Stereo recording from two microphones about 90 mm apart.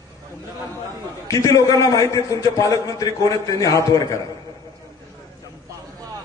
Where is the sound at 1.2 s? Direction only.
35° left (ahead or behind).